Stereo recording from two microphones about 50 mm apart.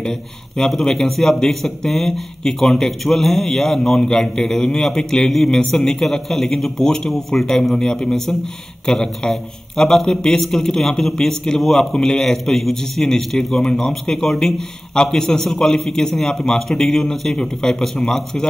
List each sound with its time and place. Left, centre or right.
0.0 s a man's voice: centre